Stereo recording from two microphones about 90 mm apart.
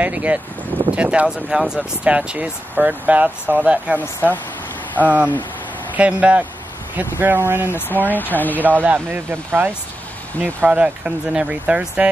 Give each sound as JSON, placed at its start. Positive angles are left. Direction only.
{"t": 0.0, "sound": "speech", "side_deg": -15}
{"t": 5.0, "sound": "speech", "side_deg": -20}
{"t": 7.7, "sound": "speech", "side_deg": 20}
{"t": 8.8, "sound": "speech", "side_deg": -20}